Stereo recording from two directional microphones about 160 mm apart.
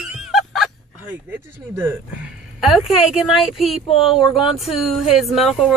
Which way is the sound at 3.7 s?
35° left (ahead or behind).